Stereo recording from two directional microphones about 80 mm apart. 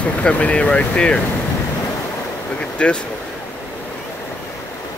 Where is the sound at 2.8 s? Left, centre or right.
Centre.